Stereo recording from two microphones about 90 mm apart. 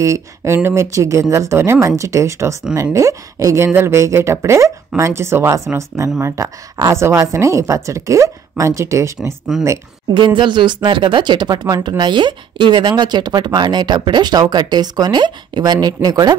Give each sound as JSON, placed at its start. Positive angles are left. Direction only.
{"t": 0.0, "sound": "speech", "side_deg": -35}
{"t": 9.5, "sound": "speech", "side_deg": -5}
{"t": 10.1, "sound": "speech", "side_deg": -60}